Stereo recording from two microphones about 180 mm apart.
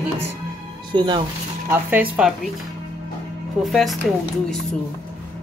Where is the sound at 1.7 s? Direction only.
10° right (ahead or behind).